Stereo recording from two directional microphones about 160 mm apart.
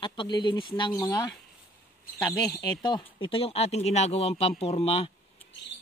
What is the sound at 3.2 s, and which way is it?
Speech, 35° left (ahead or behind).